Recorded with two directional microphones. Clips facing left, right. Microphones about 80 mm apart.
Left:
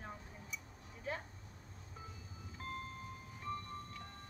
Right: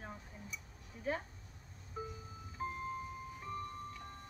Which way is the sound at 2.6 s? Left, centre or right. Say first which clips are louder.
Right 6 dB; centre.